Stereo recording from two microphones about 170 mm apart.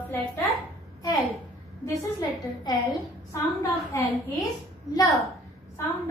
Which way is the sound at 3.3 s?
20° left (ahead or behind).